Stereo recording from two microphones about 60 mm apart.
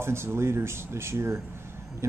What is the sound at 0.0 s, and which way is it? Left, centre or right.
Speech, right.